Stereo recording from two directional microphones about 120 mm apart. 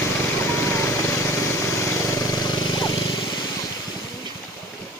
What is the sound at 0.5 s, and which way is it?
Vehicle, 20° left (ahead or behind).